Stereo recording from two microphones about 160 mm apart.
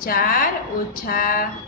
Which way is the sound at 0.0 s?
65° left (ahead or behind).